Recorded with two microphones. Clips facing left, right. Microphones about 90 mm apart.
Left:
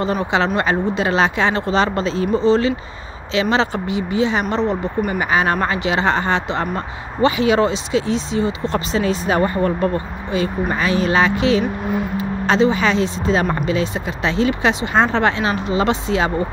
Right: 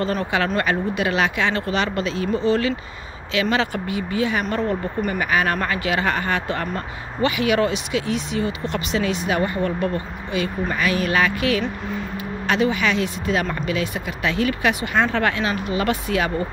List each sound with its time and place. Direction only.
0.0 s speech: 20° left (ahead or behind)